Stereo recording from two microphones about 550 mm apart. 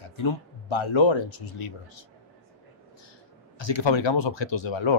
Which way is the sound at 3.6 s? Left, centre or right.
Left.